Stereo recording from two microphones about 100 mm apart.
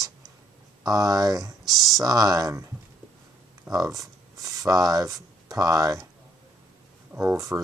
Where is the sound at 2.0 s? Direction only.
40° right (ahead or behind).